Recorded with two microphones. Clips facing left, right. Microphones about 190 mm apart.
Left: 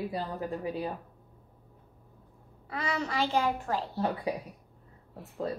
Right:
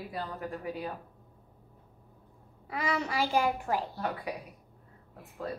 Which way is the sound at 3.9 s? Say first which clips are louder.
Left 4 dB; 25° left (ahead or behind).